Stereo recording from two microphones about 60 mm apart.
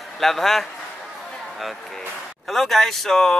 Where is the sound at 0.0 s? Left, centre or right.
Centre.